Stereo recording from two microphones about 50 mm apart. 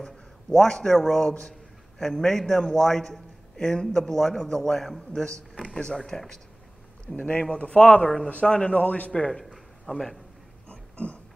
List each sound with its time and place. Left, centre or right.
0.6 s a man's voice: centre
5.7 s a man's voice: centre
7.2 s speech: left
8.8 s speech: left
9.3 s a sound: centre
10.7 s a sound: left